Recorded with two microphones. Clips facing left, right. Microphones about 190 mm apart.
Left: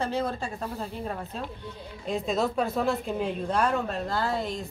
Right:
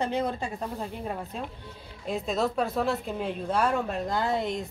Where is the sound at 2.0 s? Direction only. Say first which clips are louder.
Left 1 dB; centre (ahead or behind).